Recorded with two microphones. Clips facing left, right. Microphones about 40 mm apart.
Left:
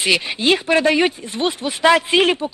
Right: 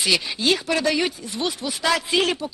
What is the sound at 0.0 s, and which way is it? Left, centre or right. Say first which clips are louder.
Speech: left 4 dB; left.